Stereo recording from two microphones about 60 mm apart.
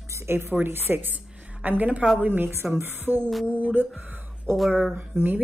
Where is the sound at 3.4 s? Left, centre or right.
Right.